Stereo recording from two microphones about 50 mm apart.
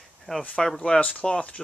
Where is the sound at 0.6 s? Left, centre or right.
Centre.